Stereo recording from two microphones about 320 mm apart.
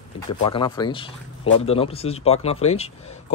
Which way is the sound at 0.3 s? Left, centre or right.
Centre.